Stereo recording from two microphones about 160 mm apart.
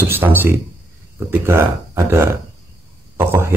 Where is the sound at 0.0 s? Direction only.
15° right (ahead or behind).